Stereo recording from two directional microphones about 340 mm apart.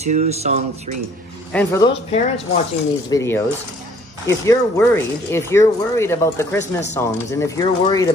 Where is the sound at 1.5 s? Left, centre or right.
Centre.